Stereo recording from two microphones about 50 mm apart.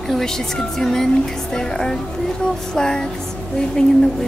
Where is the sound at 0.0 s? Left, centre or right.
Centre.